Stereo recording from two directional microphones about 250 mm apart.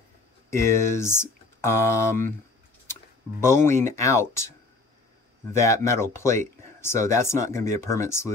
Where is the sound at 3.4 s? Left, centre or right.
Centre.